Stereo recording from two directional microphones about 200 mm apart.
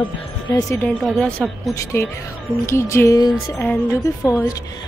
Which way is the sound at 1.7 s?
15° left (ahead or behind).